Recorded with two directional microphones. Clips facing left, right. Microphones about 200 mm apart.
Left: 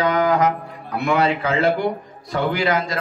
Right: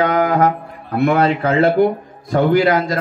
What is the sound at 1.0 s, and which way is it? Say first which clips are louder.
A man's voice: right 4 dB; 50° right (ahead or behind).